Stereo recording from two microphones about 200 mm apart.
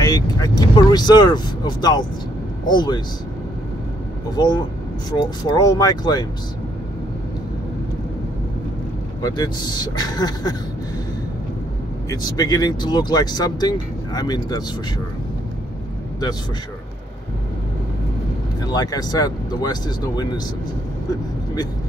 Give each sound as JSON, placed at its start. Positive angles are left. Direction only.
{"t": 0.0, "sound": "speech", "side_deg": 15}
{"t": 4.4, "sound": "speech", "side_deg": 20}
{"t": 9.2, "sound": "speech", "side_deg": 20}
{"t": 12.1, "sound": "speech", "side_deg": 20}
{"t": 18.7, "sound": "speech", "side_deg": 20}